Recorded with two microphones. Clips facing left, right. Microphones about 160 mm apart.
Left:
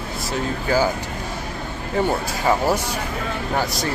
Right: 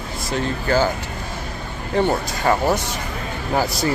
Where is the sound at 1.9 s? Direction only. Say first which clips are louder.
Right 2 dB; 5° left (ahead or behind).